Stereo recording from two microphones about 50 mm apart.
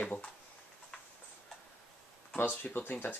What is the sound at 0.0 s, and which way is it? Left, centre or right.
Speech, left.